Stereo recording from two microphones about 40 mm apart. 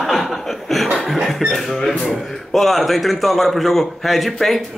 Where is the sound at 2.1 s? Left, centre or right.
Centre.